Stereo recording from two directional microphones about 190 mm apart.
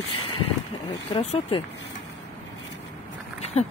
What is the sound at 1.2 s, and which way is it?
Speech, 35° left (ahead or behind).